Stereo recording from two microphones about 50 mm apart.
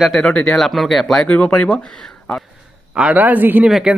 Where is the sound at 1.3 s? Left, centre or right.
Left.